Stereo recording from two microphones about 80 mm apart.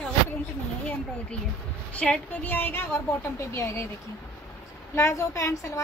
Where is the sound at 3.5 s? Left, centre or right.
Left.